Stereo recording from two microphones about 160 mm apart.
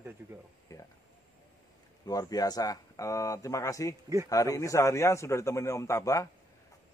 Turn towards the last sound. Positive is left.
turn(degrees=20)  # may be behind; listen again after turning